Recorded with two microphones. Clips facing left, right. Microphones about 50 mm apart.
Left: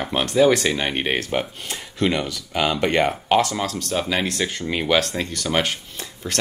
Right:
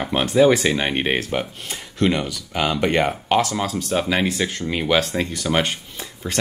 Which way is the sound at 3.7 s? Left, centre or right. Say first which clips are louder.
Right 4 dB; centre.